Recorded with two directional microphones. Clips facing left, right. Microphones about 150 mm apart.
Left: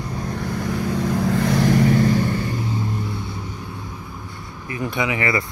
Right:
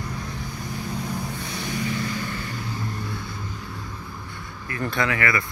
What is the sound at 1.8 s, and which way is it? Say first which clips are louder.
Vehicle: left 11 dB; 50° left (ahead or behind).